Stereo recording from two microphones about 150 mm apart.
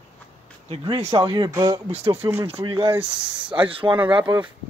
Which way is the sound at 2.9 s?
15° right (ahead or behind).